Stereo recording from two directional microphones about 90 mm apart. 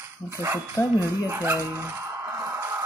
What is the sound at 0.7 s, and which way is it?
Speech, 35° left (ahead or behind).